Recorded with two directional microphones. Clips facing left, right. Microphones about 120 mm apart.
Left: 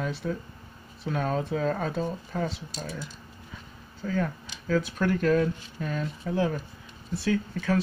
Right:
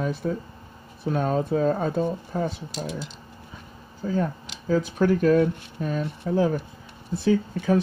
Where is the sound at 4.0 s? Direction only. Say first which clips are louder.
Right 3 dB; 30° right (ahead or behind).